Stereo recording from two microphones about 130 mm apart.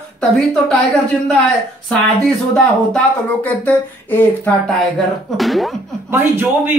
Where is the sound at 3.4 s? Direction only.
15° left (ahead or behind).